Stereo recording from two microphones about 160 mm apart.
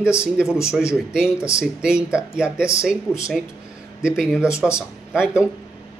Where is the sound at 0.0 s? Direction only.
5° right (ahead or behind).